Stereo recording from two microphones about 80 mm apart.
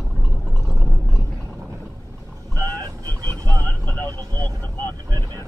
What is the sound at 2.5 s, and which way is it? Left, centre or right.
Vehicle, left.